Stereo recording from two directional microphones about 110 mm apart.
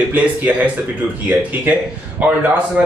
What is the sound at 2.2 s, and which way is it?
Speech, 15° right (ahead or behind).